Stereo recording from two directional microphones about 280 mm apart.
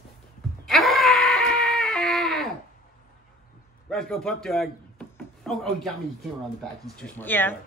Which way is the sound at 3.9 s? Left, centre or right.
Centre.